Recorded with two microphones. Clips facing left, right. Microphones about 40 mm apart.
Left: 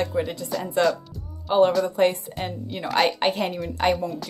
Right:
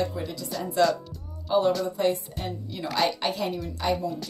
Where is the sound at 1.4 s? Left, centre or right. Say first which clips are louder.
Left 4 dB; left.